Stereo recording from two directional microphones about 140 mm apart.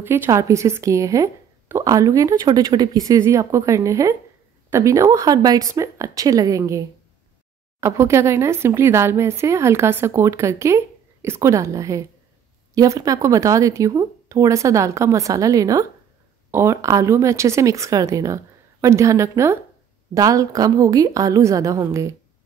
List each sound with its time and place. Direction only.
0.0 s a woman's voice: 20° right (ahead or behind)
7.8 s a woman's voice: 20° right (ahead or behind)